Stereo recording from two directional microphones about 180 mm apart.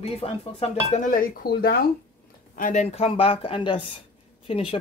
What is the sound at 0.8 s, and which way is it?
Speech, 45° left (ahead or behind).